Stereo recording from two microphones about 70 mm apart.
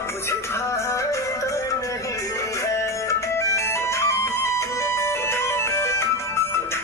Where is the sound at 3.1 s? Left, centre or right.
Left.